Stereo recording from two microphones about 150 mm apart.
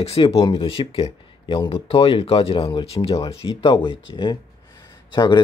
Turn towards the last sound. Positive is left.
turn(degrees=25)  # may be behind; listen again after turning